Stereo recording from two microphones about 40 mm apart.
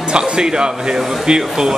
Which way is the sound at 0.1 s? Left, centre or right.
Right.